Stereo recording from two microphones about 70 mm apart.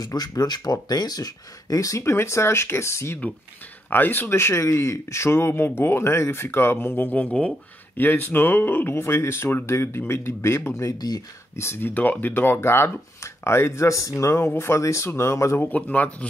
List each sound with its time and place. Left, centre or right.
0.0 s speech: left
3.9 s speech: left
11.0 s speech: left
11.5 s speech: left
11.9 s speech: left
15.6 s speech: left